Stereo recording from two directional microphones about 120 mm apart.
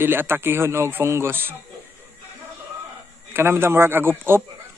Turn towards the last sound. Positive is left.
turn(degrees=-20)  # may be behind; listen again after turning